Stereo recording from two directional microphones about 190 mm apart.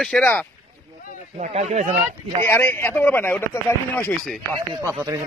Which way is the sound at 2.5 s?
10° left (ahead or behind).